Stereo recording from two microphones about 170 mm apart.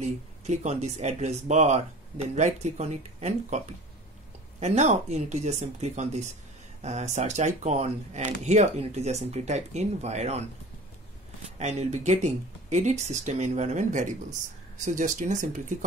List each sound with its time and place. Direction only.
0.0 s speech: 40° right (ahead or behind)
11.5 s speech: 40° right (ahead or behind)